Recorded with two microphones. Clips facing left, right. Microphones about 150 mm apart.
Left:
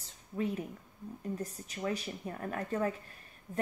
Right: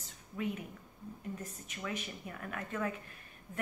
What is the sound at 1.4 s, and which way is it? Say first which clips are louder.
Speech: left 6 dB; 35° left (ahead or behind).